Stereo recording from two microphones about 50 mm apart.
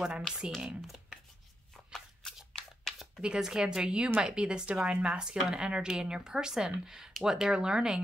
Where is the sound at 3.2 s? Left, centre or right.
Centre.